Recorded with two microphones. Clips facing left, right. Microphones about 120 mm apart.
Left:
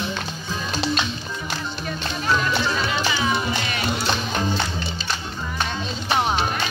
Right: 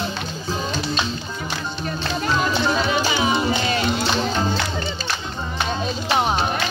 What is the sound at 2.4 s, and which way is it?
Music, 25° right (ahead or behind).